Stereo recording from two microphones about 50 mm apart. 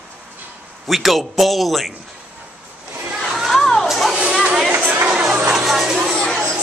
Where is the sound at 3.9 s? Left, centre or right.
Centre.